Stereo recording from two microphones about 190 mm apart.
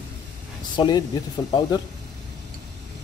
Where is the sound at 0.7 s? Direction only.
20° left (ahead or behind).